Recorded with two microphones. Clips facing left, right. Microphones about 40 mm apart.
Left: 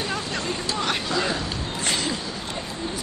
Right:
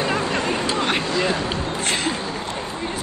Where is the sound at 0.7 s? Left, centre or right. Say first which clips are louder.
Right 4 dB; right.